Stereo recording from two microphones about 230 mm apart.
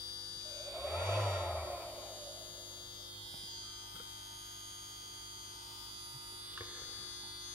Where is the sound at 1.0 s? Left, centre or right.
Centre.